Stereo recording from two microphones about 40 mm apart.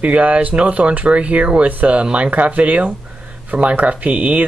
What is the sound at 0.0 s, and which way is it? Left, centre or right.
Speech, right.